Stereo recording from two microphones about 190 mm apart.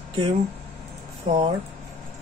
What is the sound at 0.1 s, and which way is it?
Speech, 30° right (ahead or behind).